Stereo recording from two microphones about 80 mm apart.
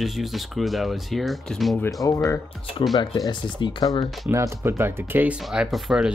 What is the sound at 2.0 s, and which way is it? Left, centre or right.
Speech, left.